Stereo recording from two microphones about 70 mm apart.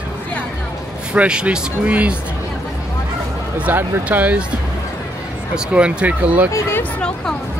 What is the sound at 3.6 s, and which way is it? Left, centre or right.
Speech, right.